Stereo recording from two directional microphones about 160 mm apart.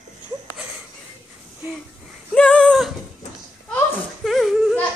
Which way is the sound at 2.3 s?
5° left (ahead or behind).